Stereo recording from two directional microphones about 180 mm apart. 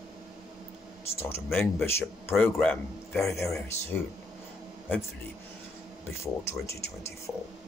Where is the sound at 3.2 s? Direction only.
15° left (ahead or behind).